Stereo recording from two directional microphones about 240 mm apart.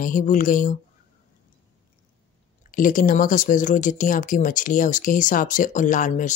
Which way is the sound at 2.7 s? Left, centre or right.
Left.